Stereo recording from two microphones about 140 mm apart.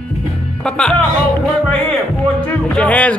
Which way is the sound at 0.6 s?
5° left (ahead or behind).